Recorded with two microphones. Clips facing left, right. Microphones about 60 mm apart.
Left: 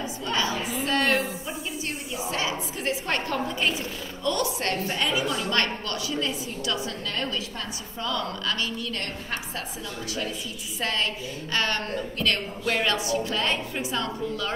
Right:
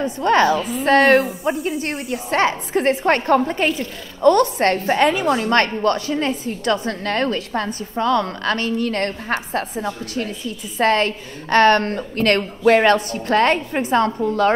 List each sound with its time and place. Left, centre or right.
0.0 s a woman's voice: right
0.9 s a woman's voice: right
1.8 s a woman's voice: right